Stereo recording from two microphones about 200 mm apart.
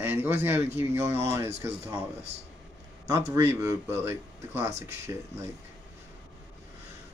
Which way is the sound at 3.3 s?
15° right (ahead or behind).